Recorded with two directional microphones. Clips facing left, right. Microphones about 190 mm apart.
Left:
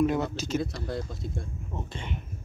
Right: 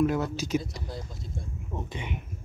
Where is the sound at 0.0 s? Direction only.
5° right (ahead or behind).